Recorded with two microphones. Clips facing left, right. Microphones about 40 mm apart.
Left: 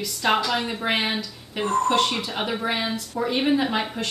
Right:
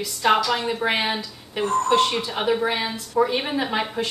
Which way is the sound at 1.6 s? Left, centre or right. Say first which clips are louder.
Right 1 dB; left.